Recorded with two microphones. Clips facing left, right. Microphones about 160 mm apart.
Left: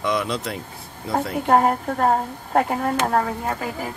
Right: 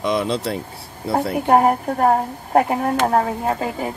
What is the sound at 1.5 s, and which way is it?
A woman's voice, 15° right (ahead or behind).